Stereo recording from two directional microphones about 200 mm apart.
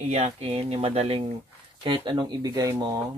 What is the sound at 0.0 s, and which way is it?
Speech, 30° right (ahead or behind).